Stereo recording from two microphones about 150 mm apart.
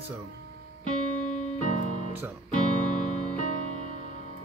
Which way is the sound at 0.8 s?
50° left (ahead or behind).